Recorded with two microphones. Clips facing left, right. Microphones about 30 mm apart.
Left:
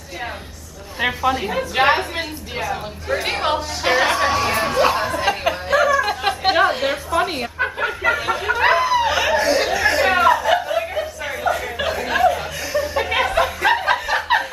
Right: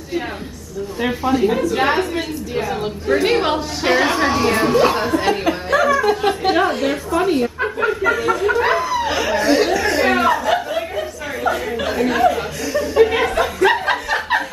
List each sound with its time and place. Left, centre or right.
1.3 s a woman's voice: centre
1.6 s a woman's voice: left
2.6 s a woman's voice: centre
6.2 s a woman's voice: centre
7.5 s a sound: centre
8.0 s a sound: centre
8.5 s snicker: left
9.6 s a sound: centre
12.2 s chuckle: centre
13.1 s chuckle: centre